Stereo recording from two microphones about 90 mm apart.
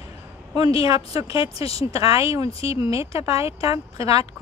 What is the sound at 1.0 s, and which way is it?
Speech, 90° left.